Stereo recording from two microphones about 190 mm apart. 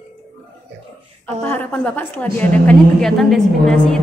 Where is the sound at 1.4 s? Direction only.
10° left (ahead or behind).